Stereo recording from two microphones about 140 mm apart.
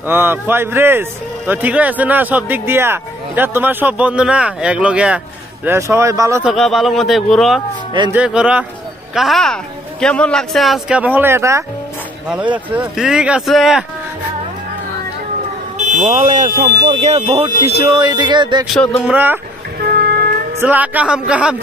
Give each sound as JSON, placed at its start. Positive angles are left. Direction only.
{"t": 0.0, "sound": "speech", "side_deg": -15}
{"t": 5.7, "sound": "speech", "side_deg": -20}
{"t": 6.4, "sound": "speech", "side_deg": 0}
{"t": 12.7, "sound": "speech", "side_deg": -5}
{"t": 15.9, "sound": "speech", "side_deg": -55}
{"t": 17.0, "sound": "speech", "side_deg": -50}
{"t": 17.9, "sound": "a sound", "side_deg": -30}
{"t": 18.7, "sound": "speech", "side_deg": 0}
{"t": 19.1, "sound": "speech", "side_deg": -15}
{"t": 19.9, "sound": "music", "side_deg": -90}
{"t": 20.5, "sound": "speech", "side_deg": -15}